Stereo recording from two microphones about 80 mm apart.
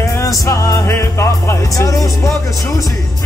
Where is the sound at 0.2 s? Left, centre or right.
Left.